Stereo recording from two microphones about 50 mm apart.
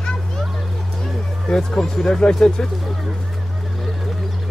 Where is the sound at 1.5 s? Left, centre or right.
Centre.